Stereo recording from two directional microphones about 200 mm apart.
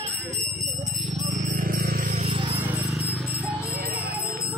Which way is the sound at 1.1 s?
40° right (ahead or behind).